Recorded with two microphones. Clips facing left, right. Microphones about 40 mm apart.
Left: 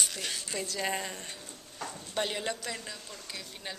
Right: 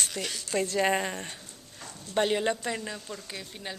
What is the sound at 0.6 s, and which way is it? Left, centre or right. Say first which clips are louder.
Speech: right 11 dB; right.